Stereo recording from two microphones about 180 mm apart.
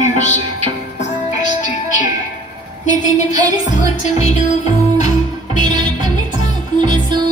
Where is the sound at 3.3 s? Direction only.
45° left (ahead or behind).